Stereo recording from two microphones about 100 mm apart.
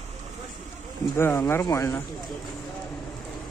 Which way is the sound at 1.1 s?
25° left (ahead or behind).